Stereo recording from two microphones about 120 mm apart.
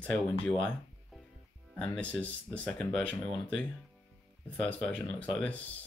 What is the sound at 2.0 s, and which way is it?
Speech, 10° left (ahead or behind).